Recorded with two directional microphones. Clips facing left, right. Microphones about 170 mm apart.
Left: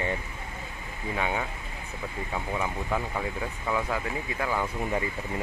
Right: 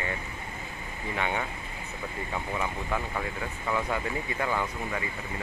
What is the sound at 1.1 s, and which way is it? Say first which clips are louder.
Speech: left 1 dB; 10° left (ahead or behind).